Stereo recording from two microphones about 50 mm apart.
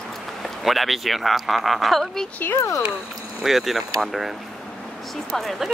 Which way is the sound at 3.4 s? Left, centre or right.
Centre.